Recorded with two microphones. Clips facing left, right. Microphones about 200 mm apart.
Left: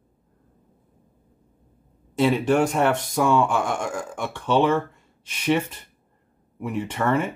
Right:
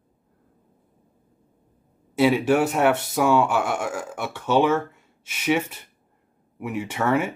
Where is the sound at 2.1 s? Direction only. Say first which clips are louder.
Right 1 dB; 10° right (ahead or behind).